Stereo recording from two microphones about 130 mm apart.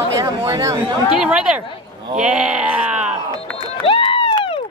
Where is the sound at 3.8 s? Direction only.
45° left (ahead or behind).